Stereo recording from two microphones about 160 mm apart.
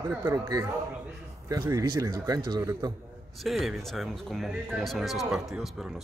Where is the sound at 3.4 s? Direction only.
Centre (ahead or behind).